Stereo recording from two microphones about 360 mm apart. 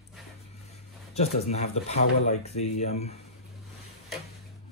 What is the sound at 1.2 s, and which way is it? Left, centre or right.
Speech, centre.